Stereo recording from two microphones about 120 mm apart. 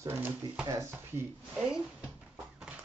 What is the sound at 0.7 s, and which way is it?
Speech, 25° right (ahead or behind).